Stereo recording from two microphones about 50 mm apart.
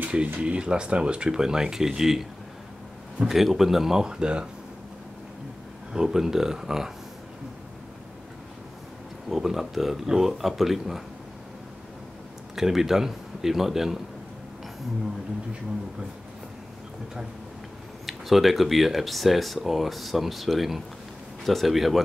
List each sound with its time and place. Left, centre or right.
0.4 s speech: right
5.9 s speech: centre
9.3 s speech: centre
12.5 s speech: centre
18.0 s speech: centre